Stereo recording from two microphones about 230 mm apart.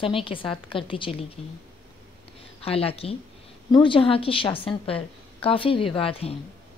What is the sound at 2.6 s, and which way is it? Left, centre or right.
A woman's voice, left.